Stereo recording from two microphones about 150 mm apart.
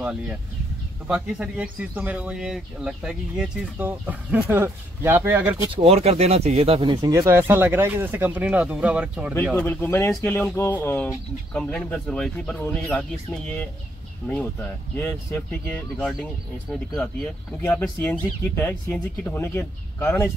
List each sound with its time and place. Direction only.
0.0 s speech: 10° right (ahead or behind)
5.7 s speech: 40° right (ahead or behind)
7.1 s speech: 20° right (ahead or behind)
9.6 s speech: 15° left (ahead or behind)
15.0 s speech: 15° left (ahead or behind)